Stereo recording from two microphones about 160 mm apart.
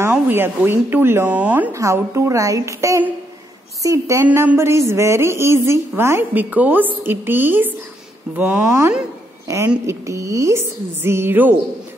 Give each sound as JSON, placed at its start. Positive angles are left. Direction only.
{"t": 0.1, "sound": "a woman's voice", "side_deg": -15}